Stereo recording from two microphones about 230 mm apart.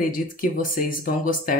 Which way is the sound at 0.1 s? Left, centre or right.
Left.